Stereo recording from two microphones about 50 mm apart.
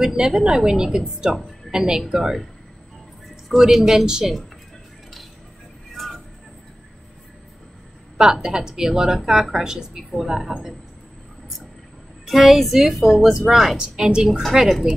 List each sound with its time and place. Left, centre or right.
0.0 s speech: centre
3.4 s speech: centre
8.2 s speech: centre
12.3 s a woman's voice: centre
13.7 s speech: centre